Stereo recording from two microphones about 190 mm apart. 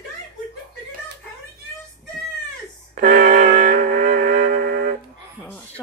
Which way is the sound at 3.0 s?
40° right (ahead or behind).